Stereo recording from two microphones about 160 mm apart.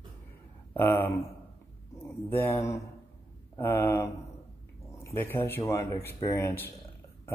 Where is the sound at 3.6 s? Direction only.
15° left (ahead or behind).